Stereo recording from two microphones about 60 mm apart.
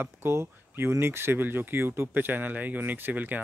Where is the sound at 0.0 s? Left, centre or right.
Right.